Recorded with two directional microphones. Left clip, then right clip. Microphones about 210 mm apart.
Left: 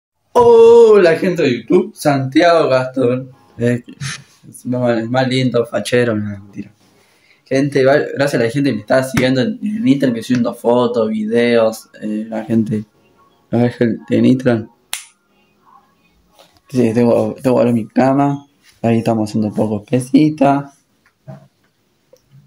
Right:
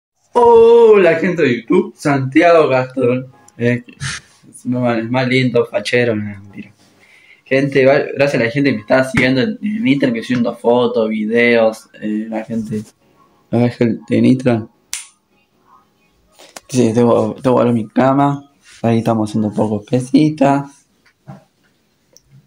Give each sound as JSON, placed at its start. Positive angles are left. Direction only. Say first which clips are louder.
{"t": 0.3, "sound": "a sound", "louder": "even", "side_deg": 0}
{"t": 0.6, "sound": "a sound", "louder": "left 2 dB", "side_deg": 20}
{"t": 0.8, "sound": "speech", "louder": "even", "side_deg": 10}
{"t": 3.6, "sound": "speech", "louder": "right 1 dB", "side_deg": 20}
{"t": 13.5, "sound": "speech", "louder": "even", "side_deg": 0}
{"t": 16.6, "sound": "speech", "louder": "right 1 dB", "side_deg": -5}